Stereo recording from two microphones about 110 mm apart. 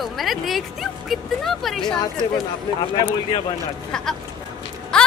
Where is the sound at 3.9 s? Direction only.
5° left (ahead or behind).